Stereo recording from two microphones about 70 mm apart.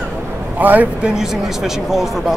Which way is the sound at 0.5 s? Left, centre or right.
Right.